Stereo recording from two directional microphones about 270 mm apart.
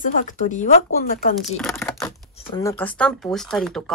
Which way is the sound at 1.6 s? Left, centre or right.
Centre.